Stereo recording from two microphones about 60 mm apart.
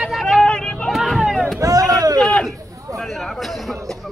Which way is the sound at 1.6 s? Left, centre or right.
Right.